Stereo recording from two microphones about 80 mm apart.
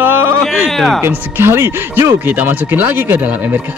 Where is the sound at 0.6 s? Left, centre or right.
Centre.